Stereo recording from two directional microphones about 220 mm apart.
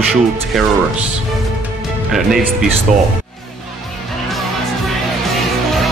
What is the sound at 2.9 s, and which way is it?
Speech, 35° right (ahead or behind).